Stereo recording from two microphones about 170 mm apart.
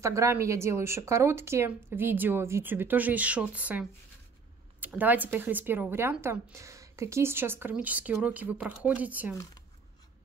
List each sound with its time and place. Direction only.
0.0 s speech: 15° right (ahead or behind)